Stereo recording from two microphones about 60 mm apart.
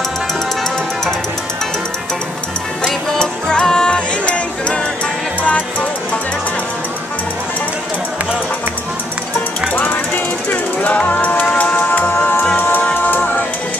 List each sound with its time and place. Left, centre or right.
2.8 s music: centre
9.8 s jackhammer: left
12.5 s music: left